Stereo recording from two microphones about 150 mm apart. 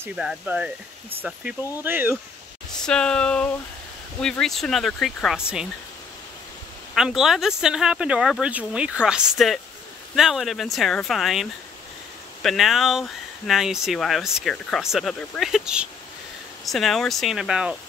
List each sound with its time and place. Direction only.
0.0 s speech: 5° right (ahead or behind)
2.8 s speech: 5° left (ahead or behind)
7.0 s speech: centre (ahead or behind)
12.4 s speech: centre (ahead or behind)